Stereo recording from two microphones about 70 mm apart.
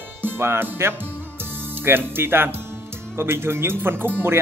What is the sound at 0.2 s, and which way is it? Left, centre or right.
Speech, right.